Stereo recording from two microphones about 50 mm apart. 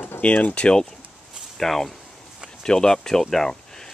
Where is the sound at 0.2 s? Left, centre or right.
Left.